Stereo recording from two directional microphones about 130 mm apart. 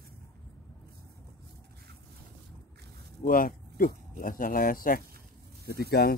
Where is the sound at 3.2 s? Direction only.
90° left.